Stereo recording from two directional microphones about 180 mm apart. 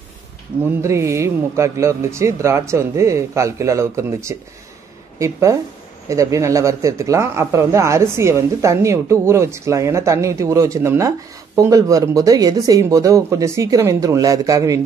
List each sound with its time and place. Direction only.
0.8 s a man's voice: 15° right (ahead or behind)